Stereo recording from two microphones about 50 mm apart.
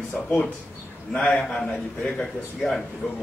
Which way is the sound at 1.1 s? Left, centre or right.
Left.